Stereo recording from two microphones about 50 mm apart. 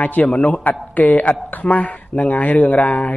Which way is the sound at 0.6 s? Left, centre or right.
Left.